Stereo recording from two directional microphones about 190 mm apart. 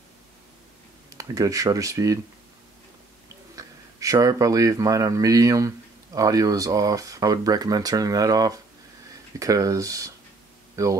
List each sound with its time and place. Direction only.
1.1 s speech: 20° right (ahead or behind)
3.5 s speech: 15° right (ahead or behind)